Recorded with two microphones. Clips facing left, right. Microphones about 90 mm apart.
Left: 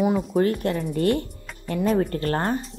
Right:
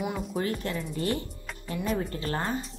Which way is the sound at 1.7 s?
45° left (ahead or behind).